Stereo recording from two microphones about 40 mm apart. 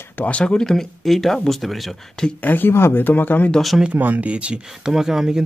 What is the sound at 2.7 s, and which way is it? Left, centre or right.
Speech, left.